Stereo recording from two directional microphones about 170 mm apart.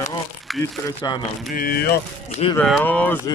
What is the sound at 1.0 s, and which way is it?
Speech, 25° left (ahead or behind).